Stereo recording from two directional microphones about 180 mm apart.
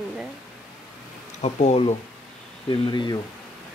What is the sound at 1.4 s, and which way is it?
Speech, 40° left (ahead or behind).